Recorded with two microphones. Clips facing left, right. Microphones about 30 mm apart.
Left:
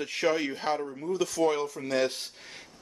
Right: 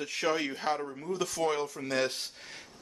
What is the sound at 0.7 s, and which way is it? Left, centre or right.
Speech, centre.